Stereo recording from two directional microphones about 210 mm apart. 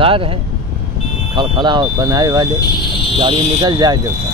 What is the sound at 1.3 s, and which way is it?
Speech, 20° right (ahead or behind).